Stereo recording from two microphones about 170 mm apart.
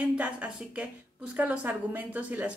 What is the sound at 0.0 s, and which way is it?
A woman's voice, 10° right (ahead or behind).